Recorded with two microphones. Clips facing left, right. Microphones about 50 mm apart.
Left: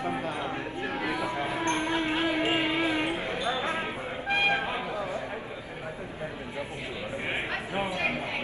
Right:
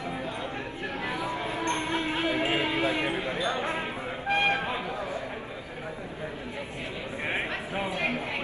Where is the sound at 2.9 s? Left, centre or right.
Right.